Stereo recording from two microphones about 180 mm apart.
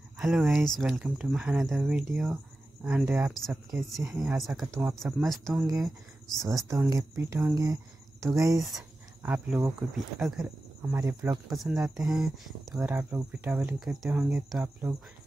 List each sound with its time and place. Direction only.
0.2 s speech: centre (ahead or behind)
5.0 s speech: centre (ahead or behind)
5.7 s speech: 20° right (ahead or behind)
9.2 s speech: 10° right (ahead or behind)
10.9 s speech: 20° right (ahead or behind)
11.4 s speech: centre (ahead or behind)